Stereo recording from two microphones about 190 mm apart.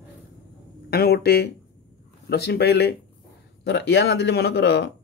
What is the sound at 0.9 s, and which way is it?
Speech, 55° left (ahead or behind).